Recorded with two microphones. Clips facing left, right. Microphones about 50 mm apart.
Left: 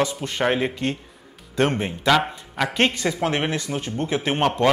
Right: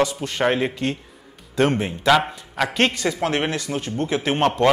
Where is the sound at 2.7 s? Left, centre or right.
Left.